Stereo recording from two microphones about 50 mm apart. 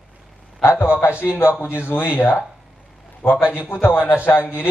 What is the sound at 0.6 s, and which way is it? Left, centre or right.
A man's voice, left.